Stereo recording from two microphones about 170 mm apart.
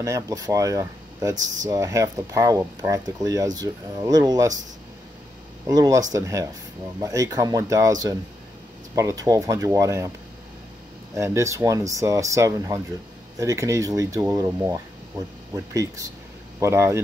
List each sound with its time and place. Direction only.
0.0 s speech: 20° right (ahead or behind)
5.7 s speech: 20° right (ahead or behind)
11.1 s speech: 15° right (ahead or behind)